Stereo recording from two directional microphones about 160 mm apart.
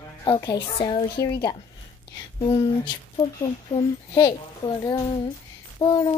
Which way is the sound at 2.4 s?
40° left (ahead or behind).